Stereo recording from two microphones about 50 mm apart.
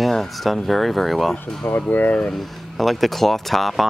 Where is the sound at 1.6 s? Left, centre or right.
Left.